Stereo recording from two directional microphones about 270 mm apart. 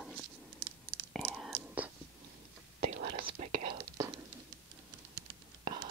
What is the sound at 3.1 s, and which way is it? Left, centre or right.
Whispering, centre.